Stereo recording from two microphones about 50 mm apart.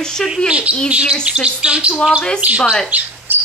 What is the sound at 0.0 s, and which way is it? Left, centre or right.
Speech, centre.